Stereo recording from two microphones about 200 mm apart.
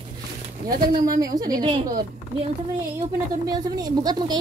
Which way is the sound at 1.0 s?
20° right (ahead or behind).